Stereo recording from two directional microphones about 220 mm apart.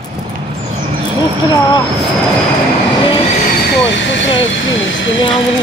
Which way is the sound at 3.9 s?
55° left (ahead or behind).